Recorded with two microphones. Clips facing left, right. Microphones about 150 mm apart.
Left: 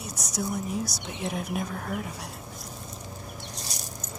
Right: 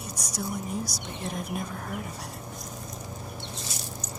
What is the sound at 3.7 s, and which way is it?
Rattle, 40° left (ahead or behind).